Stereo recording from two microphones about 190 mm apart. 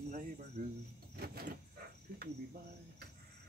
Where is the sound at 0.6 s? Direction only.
50° right (ahead or behind).